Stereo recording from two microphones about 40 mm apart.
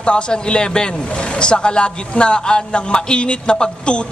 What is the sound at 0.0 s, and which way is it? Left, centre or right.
A man's voice, left.